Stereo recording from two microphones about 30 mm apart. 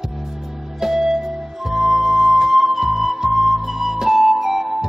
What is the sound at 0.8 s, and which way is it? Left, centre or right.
Music, centre.